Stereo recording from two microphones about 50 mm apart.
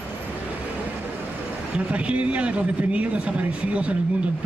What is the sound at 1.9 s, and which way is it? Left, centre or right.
Speech, right.